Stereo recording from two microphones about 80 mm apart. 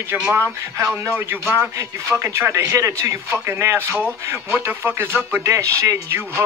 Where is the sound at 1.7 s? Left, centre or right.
Right.